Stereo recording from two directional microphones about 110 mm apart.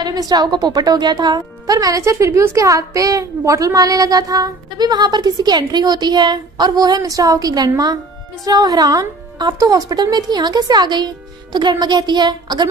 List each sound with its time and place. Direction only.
0.0 s speech: 35° right (ahead or behind)